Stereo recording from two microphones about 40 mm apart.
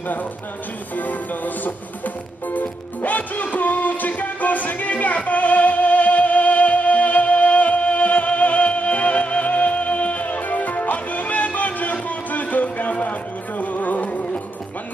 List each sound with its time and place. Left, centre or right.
0.9 s music: left